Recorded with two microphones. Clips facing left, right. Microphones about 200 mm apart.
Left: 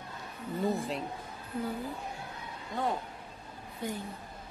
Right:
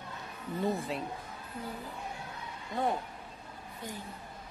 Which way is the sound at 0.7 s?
Centre (ahead or behind).